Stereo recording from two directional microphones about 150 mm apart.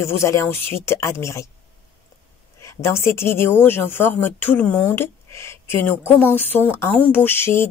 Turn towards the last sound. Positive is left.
turn(degrees=15)  # may be behind; listen again after turning